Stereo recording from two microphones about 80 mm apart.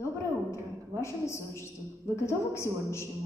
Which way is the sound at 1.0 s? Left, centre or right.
Left.